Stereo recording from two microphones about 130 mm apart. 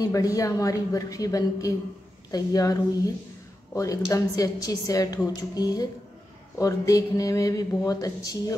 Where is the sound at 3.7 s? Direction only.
25° left (ahead or behind).